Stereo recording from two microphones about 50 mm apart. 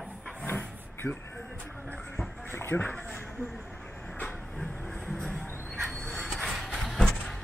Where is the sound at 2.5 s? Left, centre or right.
Left.